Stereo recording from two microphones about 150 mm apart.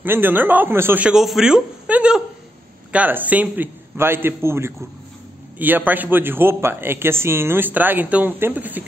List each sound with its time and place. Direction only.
0.0 s a man's voice: 15° right (ahead or behind)